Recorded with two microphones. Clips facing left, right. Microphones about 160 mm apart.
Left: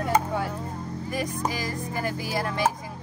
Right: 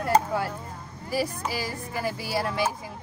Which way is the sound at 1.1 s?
5° right (ahead or behind).